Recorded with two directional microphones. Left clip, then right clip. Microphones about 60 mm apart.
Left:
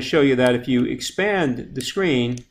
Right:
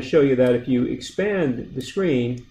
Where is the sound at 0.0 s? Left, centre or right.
Left.